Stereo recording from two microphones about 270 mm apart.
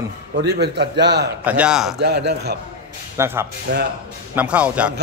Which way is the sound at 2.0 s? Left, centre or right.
Right.